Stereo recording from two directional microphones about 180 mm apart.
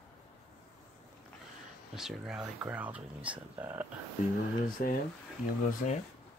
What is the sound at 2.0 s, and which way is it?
Speech, centre (ahead or behind).